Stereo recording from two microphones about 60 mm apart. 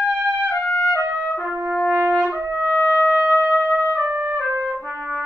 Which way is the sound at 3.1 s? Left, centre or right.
Right.